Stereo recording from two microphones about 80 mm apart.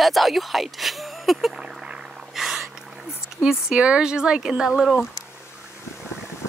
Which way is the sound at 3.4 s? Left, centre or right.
Centre.